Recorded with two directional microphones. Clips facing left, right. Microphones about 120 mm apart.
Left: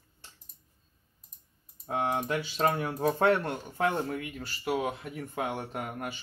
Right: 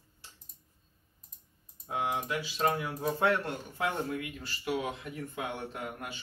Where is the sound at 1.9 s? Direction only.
50° left (ahead or behind).